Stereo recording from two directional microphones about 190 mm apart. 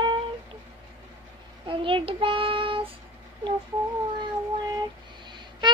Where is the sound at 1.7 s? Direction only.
25° right (ahead or behind).